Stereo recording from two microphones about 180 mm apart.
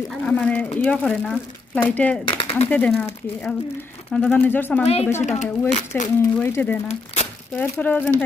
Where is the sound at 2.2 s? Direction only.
30° left (ahead or behind).